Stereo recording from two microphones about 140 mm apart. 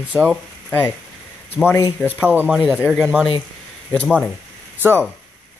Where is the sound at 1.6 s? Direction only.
20° left (ahead or behind).